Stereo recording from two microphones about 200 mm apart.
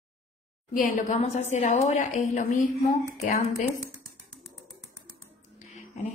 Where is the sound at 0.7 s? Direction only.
40° left (ahead or behind).